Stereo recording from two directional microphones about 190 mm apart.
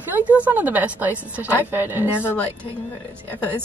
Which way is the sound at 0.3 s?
10° right (ahead or behind).